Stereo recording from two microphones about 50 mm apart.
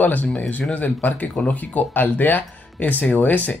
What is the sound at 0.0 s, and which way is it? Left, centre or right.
Speech, left.